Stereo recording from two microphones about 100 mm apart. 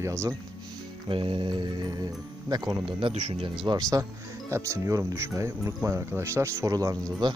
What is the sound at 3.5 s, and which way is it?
Speech, 55° right (ahead or behind).